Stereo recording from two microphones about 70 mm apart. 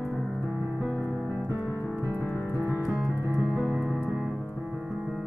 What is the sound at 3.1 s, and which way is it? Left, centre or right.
Music, right.